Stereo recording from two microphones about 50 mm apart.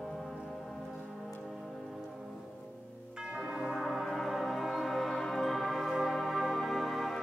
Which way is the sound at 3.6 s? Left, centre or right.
Centre.